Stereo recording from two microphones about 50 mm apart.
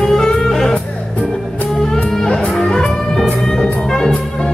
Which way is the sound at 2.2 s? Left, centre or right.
Centre.